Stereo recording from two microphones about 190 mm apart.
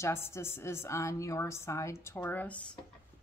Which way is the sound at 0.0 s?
15° left (ahead or behind).